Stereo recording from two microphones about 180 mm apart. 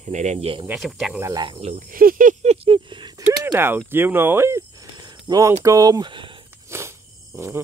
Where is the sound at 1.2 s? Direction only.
20° right (ahead or behind).